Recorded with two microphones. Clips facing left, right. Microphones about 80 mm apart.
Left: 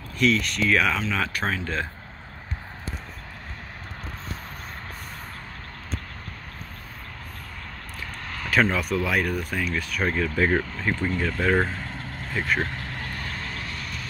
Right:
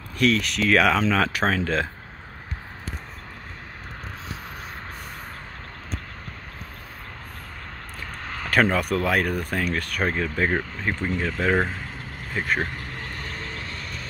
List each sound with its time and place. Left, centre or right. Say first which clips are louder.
0.2 s speech: right 1 dB; right
8.7 s speech: right 2 dB; right
10.0 s speech: left 1 dB; right
12.4 s vehicle: even; centre